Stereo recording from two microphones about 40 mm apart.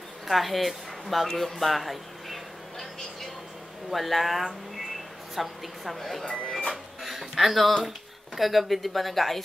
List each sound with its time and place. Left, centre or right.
0.3 s a sound: centre
3.9 s speech: centre
6.7 s cash register: centre
8.4 s speech: centre